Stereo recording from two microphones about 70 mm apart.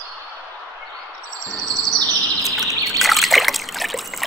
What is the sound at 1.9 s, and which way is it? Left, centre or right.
Chirp, right.